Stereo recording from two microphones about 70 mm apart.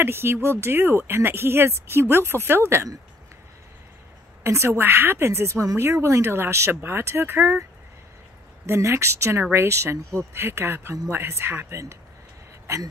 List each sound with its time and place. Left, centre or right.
0.0 s speech: right
4.4 s speech: right
8.6 s speech: right